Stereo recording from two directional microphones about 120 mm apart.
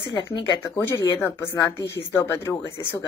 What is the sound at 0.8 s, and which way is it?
Speech, 15° left (ahead or behind).